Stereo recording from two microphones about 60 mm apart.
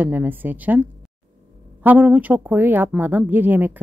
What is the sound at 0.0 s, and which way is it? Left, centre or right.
A woman's voice, right.